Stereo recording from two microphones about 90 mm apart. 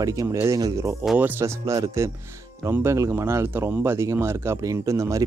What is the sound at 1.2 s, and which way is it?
Speech, 25° right (ahead or behind).